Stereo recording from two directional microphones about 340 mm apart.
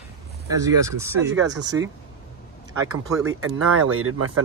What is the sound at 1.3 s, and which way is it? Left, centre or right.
Speech, right.